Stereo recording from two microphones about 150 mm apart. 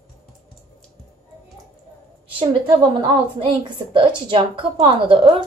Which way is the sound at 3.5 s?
35° right (ahead or behind).